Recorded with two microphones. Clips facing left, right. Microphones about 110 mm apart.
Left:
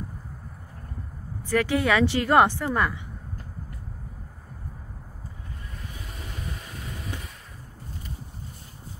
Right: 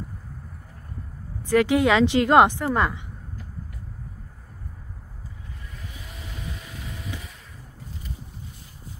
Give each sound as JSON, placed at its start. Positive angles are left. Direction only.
{"t": 1.5, "sound": "a woman's voice", "side_deg": -15}